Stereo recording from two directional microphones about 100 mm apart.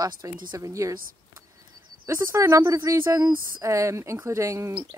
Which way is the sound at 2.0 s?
30° right (ahead or behind).